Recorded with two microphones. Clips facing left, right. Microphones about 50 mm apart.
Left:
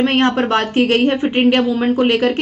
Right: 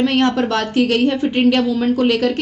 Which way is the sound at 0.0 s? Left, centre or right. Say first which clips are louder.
Left 1 dB; left.